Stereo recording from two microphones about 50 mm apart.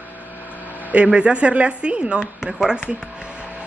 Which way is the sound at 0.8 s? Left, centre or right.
Right.